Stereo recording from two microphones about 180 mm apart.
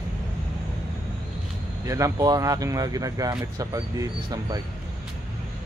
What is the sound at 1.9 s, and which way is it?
Speech, 20° right (ahead or behind).